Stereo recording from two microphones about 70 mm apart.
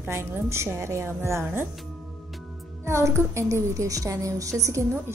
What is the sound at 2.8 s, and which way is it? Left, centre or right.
A woman's voice, right.